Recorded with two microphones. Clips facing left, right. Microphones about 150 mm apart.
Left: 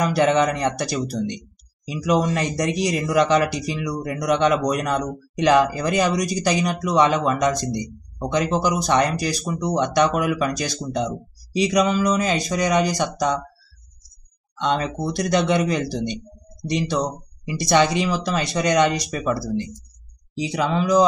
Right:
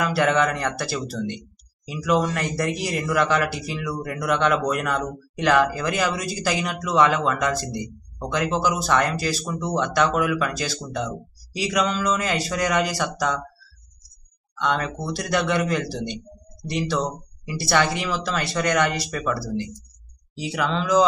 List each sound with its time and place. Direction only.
0.1 s speech: 20° left (ahead or behind)
14.6 s speech: 20° left (ahead or behind)
20.3 s speech: 15° left (ahead or behind)